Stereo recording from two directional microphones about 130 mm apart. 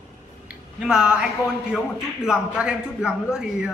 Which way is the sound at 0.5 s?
5° right (ahead or behind).